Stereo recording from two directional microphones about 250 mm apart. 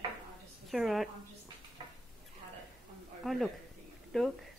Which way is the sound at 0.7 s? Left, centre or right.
Centre.